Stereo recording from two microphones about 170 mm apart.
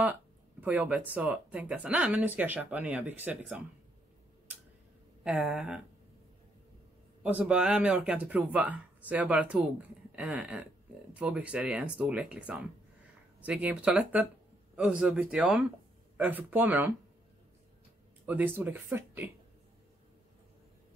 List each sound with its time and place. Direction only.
0.0 s speech: 10° right (ahead or behind)
5.2 s speech: 5° right (ahead or behind)
7.2 s speech: 10° right (ahead or behind)
18.2 s speech: 10° right (ahead or behind)